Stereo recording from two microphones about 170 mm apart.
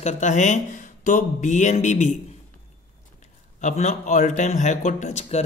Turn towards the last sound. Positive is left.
turn(degrees=40)  # may be behind; listen again after turning